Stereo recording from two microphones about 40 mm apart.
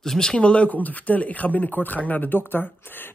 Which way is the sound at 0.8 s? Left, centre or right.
Left.